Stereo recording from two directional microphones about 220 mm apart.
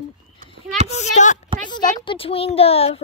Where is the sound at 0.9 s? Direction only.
35° left (ahead or behind).